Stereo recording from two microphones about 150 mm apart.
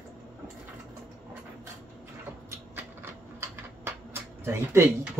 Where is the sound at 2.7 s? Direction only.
15° right (ahead or behind).